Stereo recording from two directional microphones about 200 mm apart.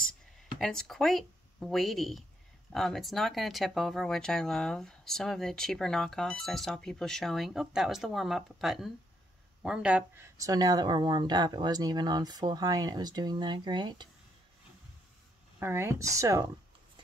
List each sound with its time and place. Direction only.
0.6 s speech: centre (ahead or behind); by 14.0 s 20° right (ahead or behind)
15.6 s speech: 10° right (ahead or behind)